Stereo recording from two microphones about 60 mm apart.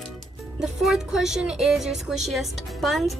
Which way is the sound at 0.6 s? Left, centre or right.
Centre.